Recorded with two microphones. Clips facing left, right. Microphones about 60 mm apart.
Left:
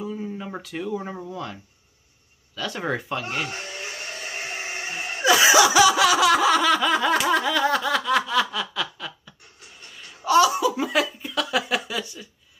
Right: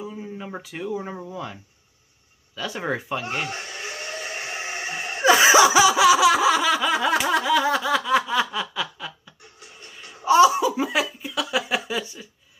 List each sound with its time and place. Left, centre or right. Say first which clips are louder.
0.0 s a sound: left 3 dB; centre
0.3 s a sound: left 1 dB; centre
0.6 s speech: even; centre
5.2 s snicker: right 2 dB; right; by 9.3 s centre
10.2 s laughter: right 2 dB; right
11.9 s speech: right 2 dB; right